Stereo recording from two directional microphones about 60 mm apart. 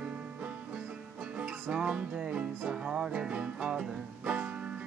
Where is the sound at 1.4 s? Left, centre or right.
Centre.